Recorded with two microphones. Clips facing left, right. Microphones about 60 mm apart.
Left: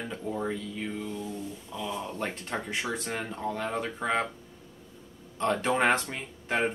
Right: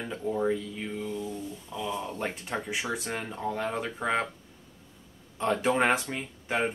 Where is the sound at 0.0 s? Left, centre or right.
Centre.